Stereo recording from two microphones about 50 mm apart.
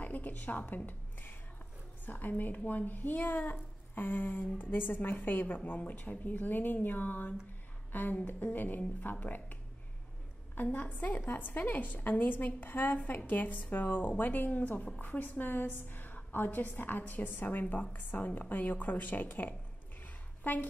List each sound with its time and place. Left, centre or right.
0.0 s a woman's voice: left
7.9 s a sound: left
8.3 s a woman's voice: left